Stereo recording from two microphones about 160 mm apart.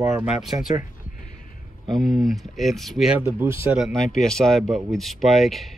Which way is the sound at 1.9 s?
Centre (ahead or behind).